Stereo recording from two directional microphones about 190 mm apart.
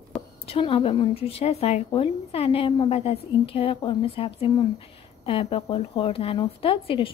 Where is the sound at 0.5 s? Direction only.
30° left (ahead or behind).